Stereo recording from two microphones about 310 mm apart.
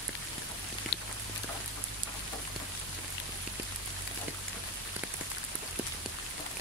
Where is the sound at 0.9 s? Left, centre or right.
Left.